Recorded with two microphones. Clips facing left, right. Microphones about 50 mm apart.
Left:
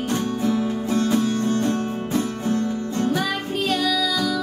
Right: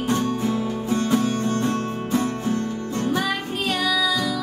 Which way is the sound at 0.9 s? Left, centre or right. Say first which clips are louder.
Even; right.